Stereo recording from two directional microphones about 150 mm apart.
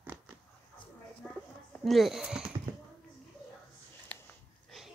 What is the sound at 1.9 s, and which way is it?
Speech, centre (ahead or behind).